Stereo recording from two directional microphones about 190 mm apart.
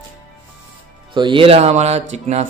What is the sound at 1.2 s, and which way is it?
A man's voice, 25° right (ahead or behind).